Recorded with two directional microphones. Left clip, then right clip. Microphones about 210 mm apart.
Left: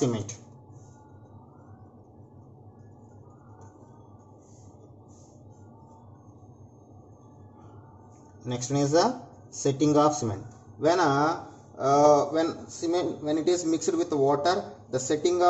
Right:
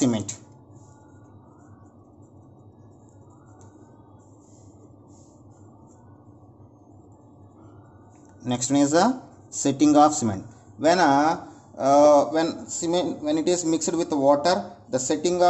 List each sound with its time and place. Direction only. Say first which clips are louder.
8.5 s a man's voice: right 5 dB; 55° right (ahead or behind)